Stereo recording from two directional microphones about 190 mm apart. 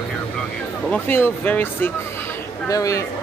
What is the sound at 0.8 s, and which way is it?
A man's voice, 10° left (ahead or behind).